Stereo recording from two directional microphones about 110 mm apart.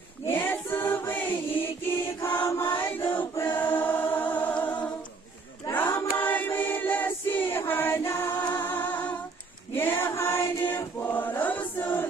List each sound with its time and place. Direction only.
0.3 s choir: 20° left (ahead or behind)
5.9 s choir: 20° left (ahead or behind)
9.8 s chant: 20° left (ahead or behind)